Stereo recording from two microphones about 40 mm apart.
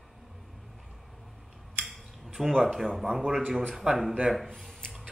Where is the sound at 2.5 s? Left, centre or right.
Centre.